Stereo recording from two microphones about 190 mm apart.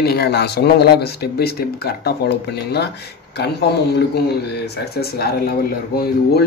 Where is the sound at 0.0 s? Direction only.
60° left (ahead or behind).